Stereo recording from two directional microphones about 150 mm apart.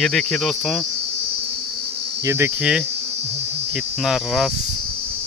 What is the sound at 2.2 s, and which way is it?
Cricket, 15° right (ahead or behind).